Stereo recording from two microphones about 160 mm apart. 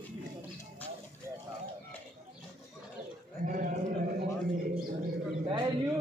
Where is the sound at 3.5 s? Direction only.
60° right (ahead or behind).